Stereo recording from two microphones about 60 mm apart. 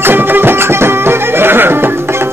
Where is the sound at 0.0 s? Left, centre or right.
Right.